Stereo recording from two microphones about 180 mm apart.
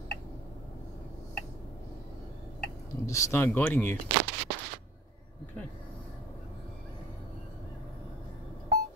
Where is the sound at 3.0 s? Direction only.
15° left (ahead or behind).